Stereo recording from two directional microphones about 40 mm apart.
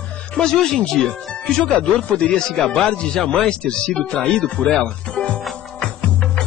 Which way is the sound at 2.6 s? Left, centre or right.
Centre.